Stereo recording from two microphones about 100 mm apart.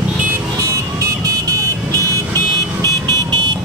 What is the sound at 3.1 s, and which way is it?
Vehicle, 45° right (ahead or behind).